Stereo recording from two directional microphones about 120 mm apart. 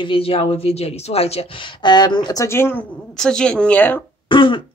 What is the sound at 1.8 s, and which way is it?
Speech, 40° left (ahead or behind).